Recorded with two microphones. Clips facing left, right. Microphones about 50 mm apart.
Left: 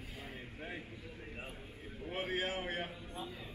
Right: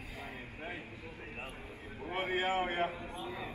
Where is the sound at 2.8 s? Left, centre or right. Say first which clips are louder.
Right 10 dB; right.